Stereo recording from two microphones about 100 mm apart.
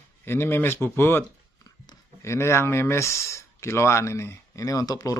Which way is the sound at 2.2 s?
25° left (ahead or behind).